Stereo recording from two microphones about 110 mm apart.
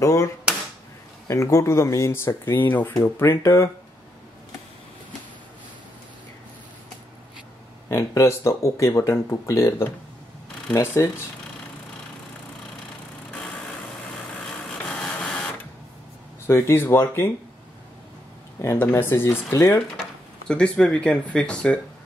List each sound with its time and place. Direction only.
0.0 s speech: 30° left (ahead or behind)
7.9 s speech: 25° left (ahead or behind)
14.7 s a sound: 5° left (ahead or behind)
16.4 s speech: 25° left (ahead or behind)
18.6 s speech: 25° left (ahead or behind)
20.4 s speech: 10° left (ahead or behind)